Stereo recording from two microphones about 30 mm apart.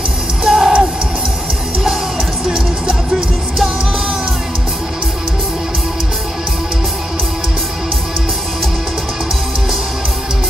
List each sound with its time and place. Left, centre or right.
0.4 s music: centre